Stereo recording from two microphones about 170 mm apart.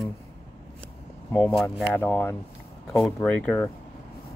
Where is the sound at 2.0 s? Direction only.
10° left (ahead or behind).